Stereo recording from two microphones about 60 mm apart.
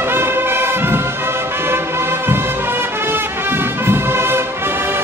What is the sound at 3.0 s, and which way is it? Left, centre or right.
Music, right.